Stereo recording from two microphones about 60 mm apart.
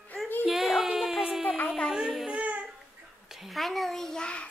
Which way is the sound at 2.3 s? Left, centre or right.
Right.